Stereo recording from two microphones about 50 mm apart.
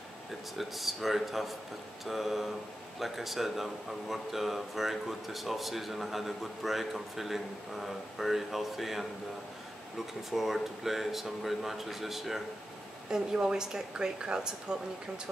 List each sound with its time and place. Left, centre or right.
0.6 s speech: centre
10.3 s speech: centre
13.1 s speech: centre